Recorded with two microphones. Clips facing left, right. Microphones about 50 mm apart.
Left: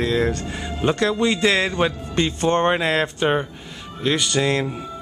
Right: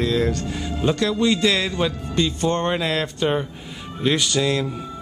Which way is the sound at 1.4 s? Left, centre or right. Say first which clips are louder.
Left 2 dB; left.